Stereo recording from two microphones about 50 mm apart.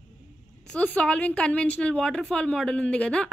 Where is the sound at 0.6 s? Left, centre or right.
Left.